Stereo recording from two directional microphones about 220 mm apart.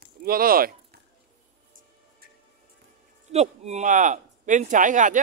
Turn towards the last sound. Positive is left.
turn(degrees=-35)  # may be behind; listen again after turning